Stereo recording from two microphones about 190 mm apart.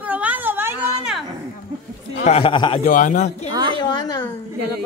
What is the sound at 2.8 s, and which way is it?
Speech, 40° left (ahead or behind).